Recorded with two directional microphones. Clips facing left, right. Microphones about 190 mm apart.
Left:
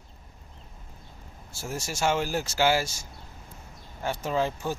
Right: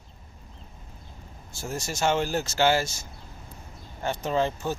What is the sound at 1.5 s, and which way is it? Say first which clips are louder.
Speech: right 1 dB; 10° left (ahead or behind).